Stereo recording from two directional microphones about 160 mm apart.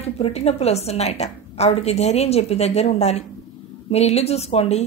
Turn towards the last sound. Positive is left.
turn(degrees=40)  # may be behind; listen again after turning